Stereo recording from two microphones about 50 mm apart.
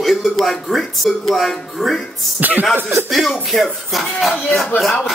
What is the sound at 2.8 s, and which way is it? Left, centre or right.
Speech, right.